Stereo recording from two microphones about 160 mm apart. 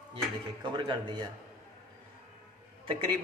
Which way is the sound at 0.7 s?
30° right (ahead or behind).